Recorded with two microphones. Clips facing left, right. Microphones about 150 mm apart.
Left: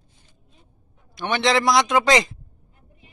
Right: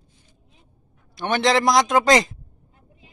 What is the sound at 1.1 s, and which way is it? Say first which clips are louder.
A man's voice: right 1 dB; 45° right (ahead or behind).